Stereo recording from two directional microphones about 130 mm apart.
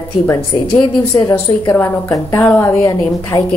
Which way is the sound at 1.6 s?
20° left (ahead or behind).